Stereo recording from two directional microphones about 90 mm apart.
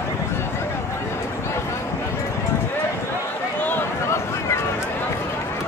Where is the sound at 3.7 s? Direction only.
25° left (ahead or behind).